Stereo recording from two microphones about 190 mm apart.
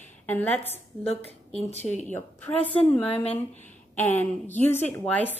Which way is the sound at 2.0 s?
10° left (ahead or behind).